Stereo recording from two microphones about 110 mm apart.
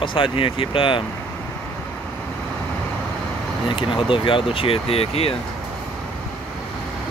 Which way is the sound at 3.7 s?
50° left (ahead or behind).